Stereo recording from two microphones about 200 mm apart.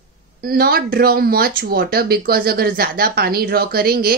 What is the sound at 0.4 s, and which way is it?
Speech, 50° right (ahead or behind).